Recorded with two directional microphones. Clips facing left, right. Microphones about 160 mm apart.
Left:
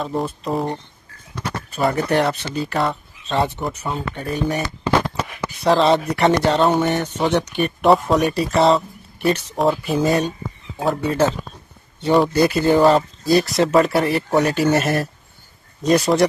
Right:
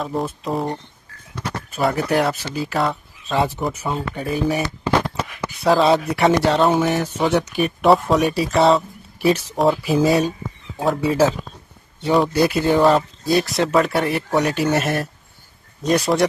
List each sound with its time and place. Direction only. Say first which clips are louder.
0.0 s speech: left 1 dB; centre (ahead or behind)